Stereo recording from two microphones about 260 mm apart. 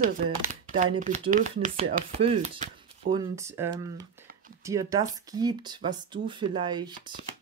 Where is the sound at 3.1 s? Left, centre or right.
Centre.